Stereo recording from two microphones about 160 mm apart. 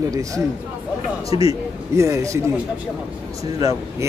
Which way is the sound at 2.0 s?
20° right (ahead or behind).